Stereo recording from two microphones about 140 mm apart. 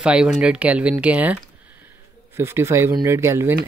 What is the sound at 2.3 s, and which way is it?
Speech, 20° right (ahead or behind).